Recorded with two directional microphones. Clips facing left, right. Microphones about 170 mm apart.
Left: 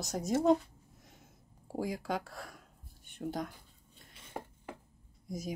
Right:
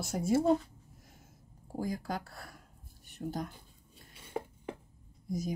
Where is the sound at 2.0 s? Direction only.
Centre (ahead or behind).